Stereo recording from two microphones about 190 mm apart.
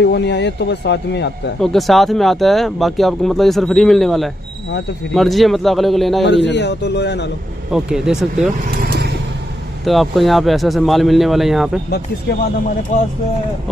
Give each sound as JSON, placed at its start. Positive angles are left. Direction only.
{"t": 0.0, "sound": "a man's voice", "side_deg": 65}
{"t": 1.6, "sound": "speech", "side_deg": 0}
{"t": 6.2, "sound": "a man's voice", "side_deg": 70}
{"t": 7.7, "sound": "speech", "side_deg": -5}
{"t": 9.8, "sound": "speech", "side_deg": 0}
{"t": 12.9, "sound": "speech", "side_deg": 40}